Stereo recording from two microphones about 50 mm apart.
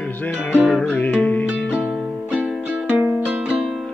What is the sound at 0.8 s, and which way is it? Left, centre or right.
Music, left.